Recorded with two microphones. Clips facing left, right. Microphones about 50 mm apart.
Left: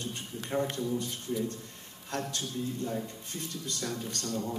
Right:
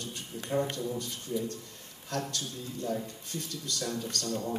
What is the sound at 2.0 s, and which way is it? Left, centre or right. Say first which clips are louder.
A man's voice: even; left.